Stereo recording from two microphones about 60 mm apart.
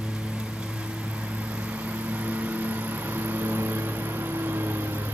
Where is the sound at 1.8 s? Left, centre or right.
Right.